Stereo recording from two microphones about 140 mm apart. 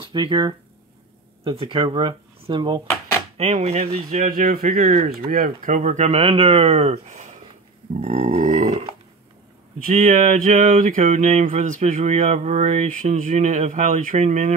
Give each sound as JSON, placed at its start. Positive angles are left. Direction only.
{"t": 0.0, "sound": "speech", "side_deg": -35}
{"t": 3.3, "sound": "speech", "side_deg": -50}
{"t": 4.2, "sound": "a man's voice", "side_deg": -90}
{"t": 4.8, "sound": "speech", "side_deg": -55}
{"t": 5.1, "sound": "speech", "side_deg": -90}
{"t": 8.0, "sound": "burping", "side_deg": -50}
{"t": 9.9, "sound": "speech", "side_deg": -50}
{"t": 10.6, "sound": "speech", "side_deg": -70}